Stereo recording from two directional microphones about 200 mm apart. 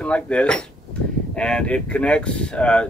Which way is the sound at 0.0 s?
5° left (ahead or behind).